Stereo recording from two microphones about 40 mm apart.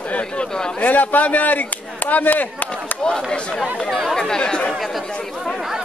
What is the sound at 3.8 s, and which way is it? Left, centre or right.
Speech, centre.